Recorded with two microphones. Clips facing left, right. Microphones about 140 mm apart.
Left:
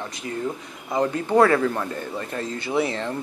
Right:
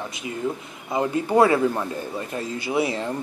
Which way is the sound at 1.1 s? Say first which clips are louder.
Even; 15° right (ahead or behind).